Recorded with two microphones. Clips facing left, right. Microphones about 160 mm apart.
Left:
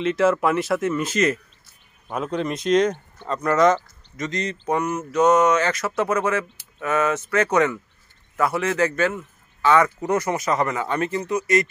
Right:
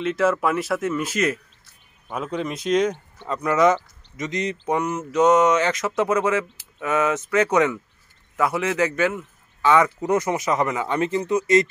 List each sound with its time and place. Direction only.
0.0 s speech: centre (ahead or behind); by 11.6 s 25° right (ahead or behind)